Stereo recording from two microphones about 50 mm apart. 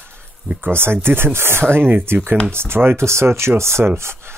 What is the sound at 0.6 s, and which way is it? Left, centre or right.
Speech, right.